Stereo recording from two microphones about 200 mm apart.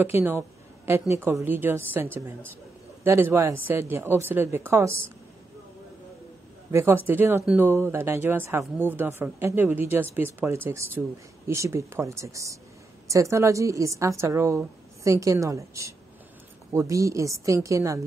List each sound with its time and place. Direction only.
0.0 s speech: 10° right (ahead or behind)
3.0 s a woman's voice: 10° right (ahead or behind)
6.7 s a woman's voice: 10° right (ahead or behind)